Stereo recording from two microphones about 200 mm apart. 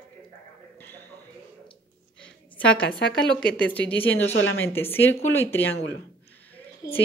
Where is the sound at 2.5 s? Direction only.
5° left (ahead or behind).